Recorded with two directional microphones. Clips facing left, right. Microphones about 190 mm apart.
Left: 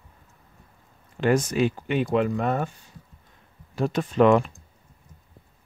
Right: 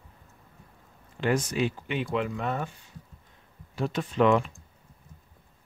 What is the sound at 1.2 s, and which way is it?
Speech, 45° left (ahead or behind).